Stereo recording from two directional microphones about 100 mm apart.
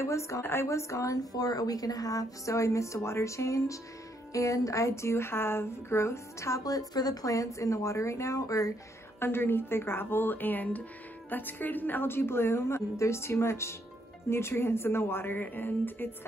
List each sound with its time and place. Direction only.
0.0 s a woman's voice: 30° left (ahead or behind)